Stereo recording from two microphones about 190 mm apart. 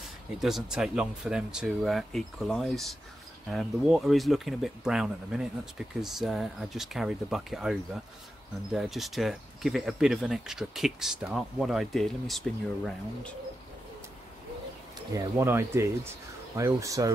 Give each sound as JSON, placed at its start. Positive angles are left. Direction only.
{"t": 0.4, "sound": "speech", "side_deg": 0}
{"t": 15.1, "sound": "speech", "side_deg": -15}